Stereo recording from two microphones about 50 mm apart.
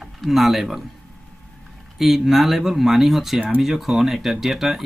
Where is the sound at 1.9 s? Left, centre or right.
Centre.